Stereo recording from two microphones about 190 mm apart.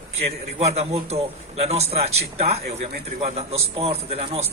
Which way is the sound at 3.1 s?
35° right (ahead or behind).